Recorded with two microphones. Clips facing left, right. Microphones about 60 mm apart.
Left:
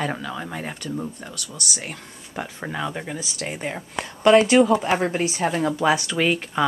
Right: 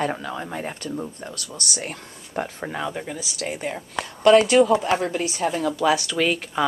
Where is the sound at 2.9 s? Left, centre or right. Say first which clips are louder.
Even; centre.